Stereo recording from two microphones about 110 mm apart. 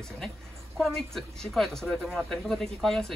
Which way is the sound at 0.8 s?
5° left (ahead or behind).